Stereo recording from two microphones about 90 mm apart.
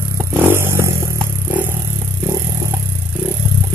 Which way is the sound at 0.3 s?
25° right (ahead or behind).